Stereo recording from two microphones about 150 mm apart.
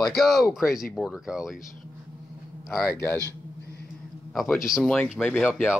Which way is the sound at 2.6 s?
Centre (ahead or behind).